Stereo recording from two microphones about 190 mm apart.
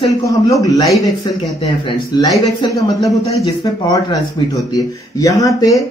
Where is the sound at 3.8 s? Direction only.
20° left (ahead or behind).